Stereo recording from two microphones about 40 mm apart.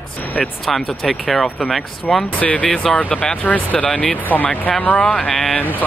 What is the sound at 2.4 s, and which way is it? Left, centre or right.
Speech, left.